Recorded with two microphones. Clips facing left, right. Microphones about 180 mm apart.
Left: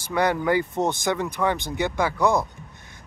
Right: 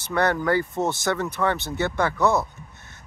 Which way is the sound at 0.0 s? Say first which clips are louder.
Even; 10° left (ahead or behind).